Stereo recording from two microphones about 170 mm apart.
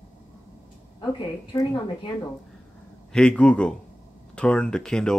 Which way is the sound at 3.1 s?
5° left (ahead or behind).